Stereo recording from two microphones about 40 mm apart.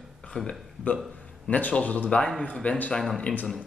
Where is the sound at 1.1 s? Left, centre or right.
Left.